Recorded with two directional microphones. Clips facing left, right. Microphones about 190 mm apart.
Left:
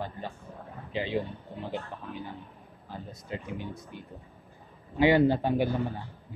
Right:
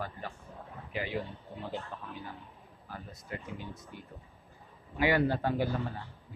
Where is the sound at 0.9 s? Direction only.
25° left (ahead or behind).